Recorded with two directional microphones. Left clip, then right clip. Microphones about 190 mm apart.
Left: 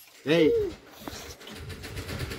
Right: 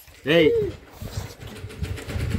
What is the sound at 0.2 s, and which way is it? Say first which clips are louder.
Speech: right 4 dB; 10° right (ahead or behind).